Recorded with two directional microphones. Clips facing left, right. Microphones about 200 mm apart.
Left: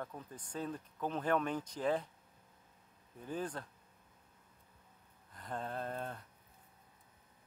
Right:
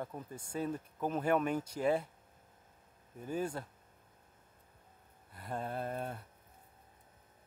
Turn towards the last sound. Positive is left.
turn(degrees=-10)  # may be behind; listen again after turning